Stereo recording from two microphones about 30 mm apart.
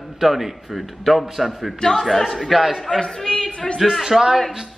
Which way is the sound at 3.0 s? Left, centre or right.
Left.